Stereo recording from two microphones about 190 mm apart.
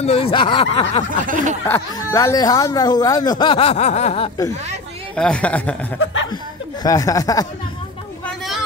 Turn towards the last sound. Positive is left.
turn(degrees=20)  # may be behind; listen again after turning